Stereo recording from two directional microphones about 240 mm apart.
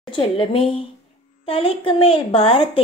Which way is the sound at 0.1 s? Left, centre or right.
Left.